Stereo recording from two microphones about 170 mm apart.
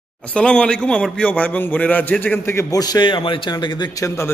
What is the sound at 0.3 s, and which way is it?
A man's voice, 5° left (ahead or behind).